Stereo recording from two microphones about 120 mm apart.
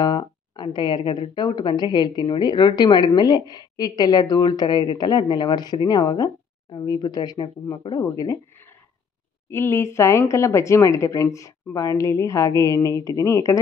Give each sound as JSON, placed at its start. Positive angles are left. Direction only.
{"t": 0.0, "sound": "speech", "side_deg": 35}
{"t": 9.5, "sound": "speech", "side_deg": 20}